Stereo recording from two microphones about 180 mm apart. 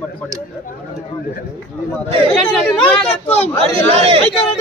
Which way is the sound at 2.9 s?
35° left (ahead or behind).